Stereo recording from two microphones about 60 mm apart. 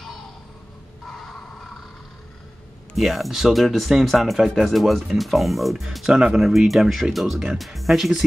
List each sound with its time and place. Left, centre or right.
1.0 s crow: centre
3.0 s speech: centre